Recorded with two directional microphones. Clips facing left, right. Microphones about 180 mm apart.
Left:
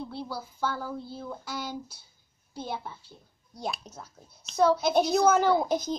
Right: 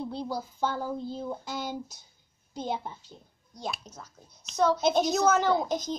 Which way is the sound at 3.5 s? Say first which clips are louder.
Left 2 dB; 10° left (ahead or behind).